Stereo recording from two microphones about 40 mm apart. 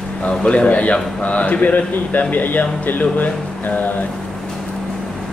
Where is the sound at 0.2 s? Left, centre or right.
Left.